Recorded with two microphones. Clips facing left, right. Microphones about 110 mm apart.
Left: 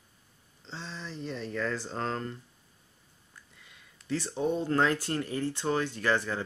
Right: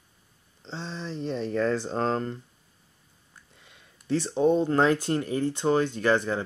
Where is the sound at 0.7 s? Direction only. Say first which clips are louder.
Right 6 dB; 25° right (ahead or behind).